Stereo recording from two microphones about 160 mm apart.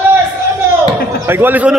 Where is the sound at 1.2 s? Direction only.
15° right (ahead or behind).